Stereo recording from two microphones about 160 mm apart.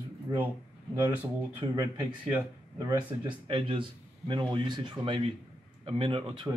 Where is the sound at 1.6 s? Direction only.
25° right (ahead or behind).